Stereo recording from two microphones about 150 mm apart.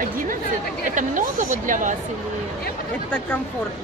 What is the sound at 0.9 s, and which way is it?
Speech, 60° right (ahead or behind).